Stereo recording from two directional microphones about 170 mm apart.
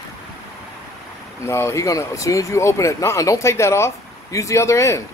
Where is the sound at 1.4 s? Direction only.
15° left (ahead or behind).